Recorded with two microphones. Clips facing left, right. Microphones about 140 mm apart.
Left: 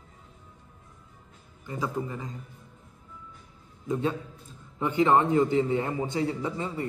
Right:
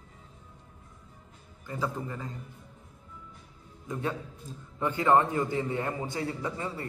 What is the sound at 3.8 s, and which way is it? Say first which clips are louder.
A man's voice: left 5 dB; 20° left (ahead or behind).